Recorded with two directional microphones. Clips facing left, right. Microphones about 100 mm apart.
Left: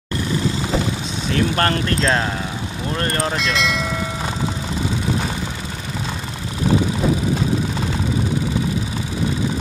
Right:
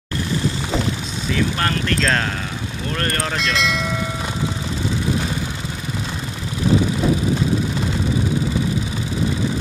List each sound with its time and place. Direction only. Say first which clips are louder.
1.3 s vehicle: left 2 dB; 45° left (ahead or behind)
1.9 s speech: left 1 dB; 20° left (ahead or behind)
3.3 s speech: even; centre (ahead or behind)